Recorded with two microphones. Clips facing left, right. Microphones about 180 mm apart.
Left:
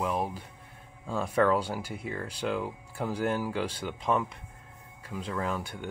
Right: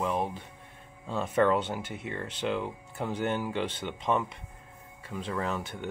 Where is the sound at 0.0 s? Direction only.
5° left (ahead or behind).